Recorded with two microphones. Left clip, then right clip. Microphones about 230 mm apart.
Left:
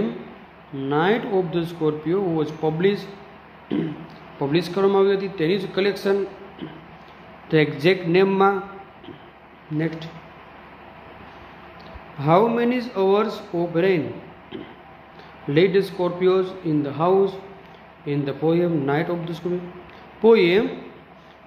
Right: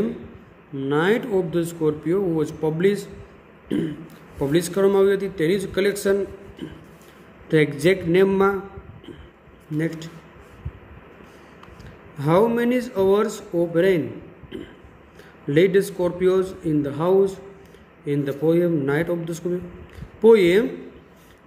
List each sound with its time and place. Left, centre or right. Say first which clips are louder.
0.7 s speech: even; right
4.4 s speech: right 1 dB; right
7.4 s speech: even; right
9.8 s speech: even; right
12.2 s speech: left 1 dB; right
15.5 s speech: right 1 dB; right